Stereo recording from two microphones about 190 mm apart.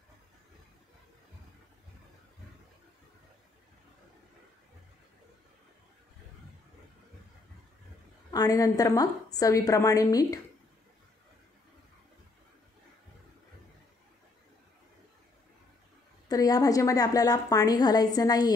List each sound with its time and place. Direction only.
8.3 s a woman's voice: 20° left (ahead or behind)
16.3 s a woman's voice: 20° left (ahead or behind)